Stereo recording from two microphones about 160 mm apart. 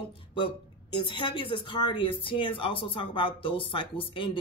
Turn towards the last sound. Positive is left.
turn(degrees=30)  # may be behind; listen again after turning